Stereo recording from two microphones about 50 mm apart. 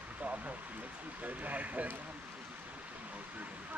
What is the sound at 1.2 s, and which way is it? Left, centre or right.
Speech, right.